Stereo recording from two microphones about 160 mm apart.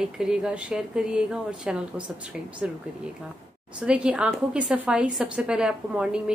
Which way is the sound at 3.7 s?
5° right (ahead or behind).